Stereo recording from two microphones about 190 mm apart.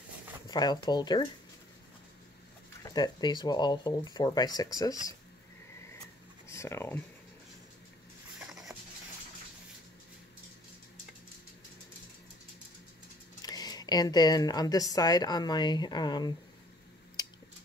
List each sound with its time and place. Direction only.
0.5 s speech: 20° left (ahead or behind)
2.8 s speech: 20° left (ahead or behind)
6.4 s speech: 15° left (ahead or behind)
8.5 s a sound: 5° right (ahead or behind)
13.4 s speech: 20° left (ahead or behind)